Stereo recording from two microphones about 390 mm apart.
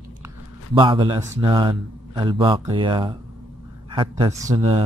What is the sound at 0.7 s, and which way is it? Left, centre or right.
A man's voice, centre.